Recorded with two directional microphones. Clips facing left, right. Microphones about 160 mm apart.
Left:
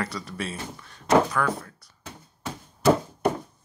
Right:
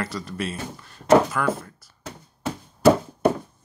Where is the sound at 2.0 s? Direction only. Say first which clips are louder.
Right 6 dB; 80° right.